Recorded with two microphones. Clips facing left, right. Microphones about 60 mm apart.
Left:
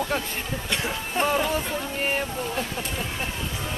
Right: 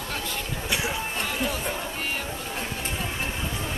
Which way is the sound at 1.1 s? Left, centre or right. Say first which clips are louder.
Left 5 dB; left.